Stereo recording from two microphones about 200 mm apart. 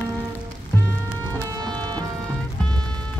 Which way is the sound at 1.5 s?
20° right (ahead or behind).